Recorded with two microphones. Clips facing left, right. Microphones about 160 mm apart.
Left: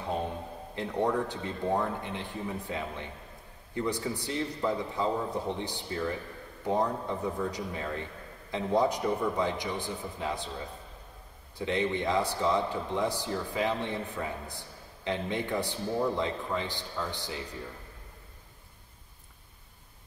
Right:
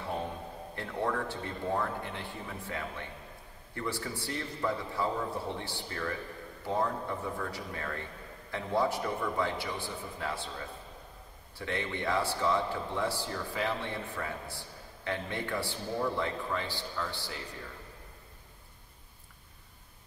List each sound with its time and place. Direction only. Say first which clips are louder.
0.7 s a man's voice: left 4 dB; 20° left (ahead or behind)
11.5 s a man's voice: left 6 dB; 20° left (ahead or behind)